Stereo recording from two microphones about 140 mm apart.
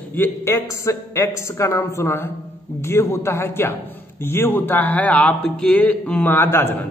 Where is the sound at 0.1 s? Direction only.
15° left (ahead or behind).